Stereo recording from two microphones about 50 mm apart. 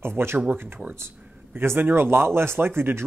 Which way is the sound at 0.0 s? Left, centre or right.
Right.